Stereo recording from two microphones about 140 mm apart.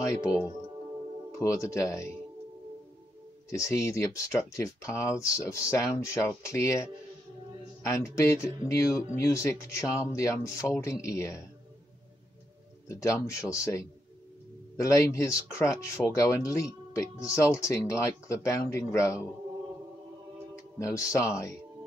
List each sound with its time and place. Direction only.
1.4 s speech: 25° left (ahead or behind)
3.4 s speech: 20° left (ahead or behind)
12.8 s speech: 20° left (ahead or behind)
20.5 s speech: 20° left (ahead or behind)